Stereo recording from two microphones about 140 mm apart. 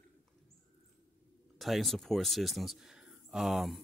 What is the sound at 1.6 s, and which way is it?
Speech, centre (ahead or behind).